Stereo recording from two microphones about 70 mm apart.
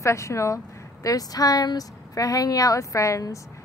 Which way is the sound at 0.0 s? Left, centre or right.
Left.